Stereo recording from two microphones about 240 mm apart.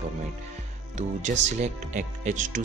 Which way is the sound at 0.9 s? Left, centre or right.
Right.